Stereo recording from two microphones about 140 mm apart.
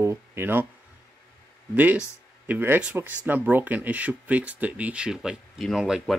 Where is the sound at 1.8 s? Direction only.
10° right (ahead or behind).